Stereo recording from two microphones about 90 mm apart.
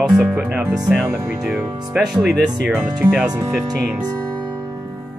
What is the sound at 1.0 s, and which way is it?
Speech, 30° right (ahead or behind).